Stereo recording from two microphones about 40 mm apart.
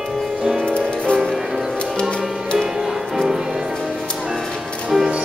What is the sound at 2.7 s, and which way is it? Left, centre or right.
Music, centre.